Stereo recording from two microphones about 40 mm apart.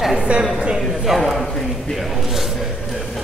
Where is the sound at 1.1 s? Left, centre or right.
Centre.